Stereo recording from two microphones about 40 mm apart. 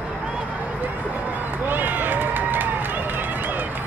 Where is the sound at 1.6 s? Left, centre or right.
Right.